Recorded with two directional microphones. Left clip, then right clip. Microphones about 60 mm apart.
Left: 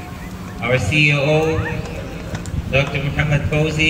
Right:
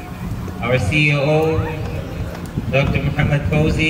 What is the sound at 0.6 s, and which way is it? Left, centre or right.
A man's voice, centre.